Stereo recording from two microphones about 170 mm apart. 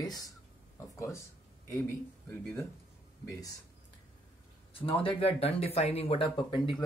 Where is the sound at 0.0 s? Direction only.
25° left (ahead or behind).